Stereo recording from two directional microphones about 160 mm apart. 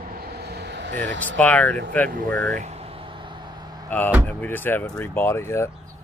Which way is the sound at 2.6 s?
40° right (ahead or behind).